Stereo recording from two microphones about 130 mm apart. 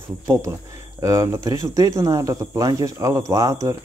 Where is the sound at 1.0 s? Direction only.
25° right (ahead or behind).